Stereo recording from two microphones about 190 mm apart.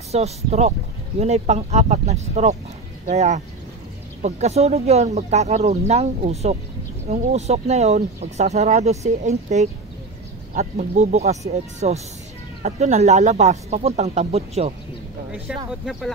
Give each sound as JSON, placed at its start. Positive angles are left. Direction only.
{"t": 0.1, "sound": "speech", "side_deg": -35}
{"t": 15.4, "sound": "speech", "side_deg": 0}